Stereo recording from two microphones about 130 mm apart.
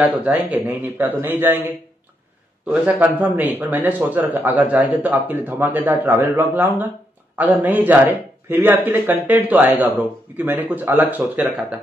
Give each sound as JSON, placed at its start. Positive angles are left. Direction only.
{"t": 0.0, "sound": "speech", "side_deg": -10}
{"t": 2.7, "sound": "speech", "side_deg": -10}